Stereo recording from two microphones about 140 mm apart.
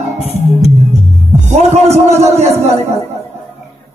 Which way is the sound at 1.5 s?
50° right (ahead or behind).